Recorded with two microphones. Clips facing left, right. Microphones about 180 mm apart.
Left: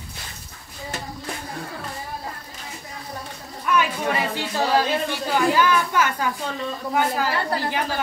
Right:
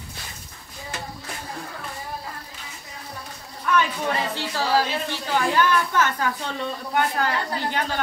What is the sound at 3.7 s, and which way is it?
A woman's voice, 10° left (ahead or behind).